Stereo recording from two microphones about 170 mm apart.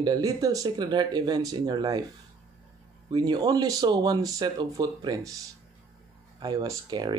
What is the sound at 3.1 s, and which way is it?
Speech, 25° right (ahead or behind).